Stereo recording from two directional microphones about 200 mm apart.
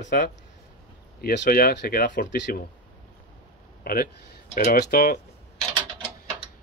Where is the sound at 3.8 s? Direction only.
45° left (ahead or behind).